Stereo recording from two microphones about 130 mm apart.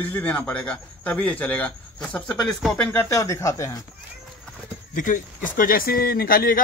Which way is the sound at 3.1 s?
25° left (ahead or behind).